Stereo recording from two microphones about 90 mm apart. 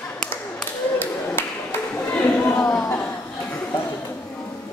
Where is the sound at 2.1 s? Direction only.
20° left (ahead or behind).